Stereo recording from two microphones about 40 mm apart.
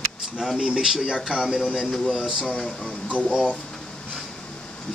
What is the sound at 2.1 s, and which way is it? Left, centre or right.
Speech, centre.